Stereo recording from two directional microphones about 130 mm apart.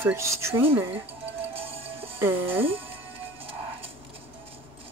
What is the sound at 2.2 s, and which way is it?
Speech, 15° right (ahead or behind).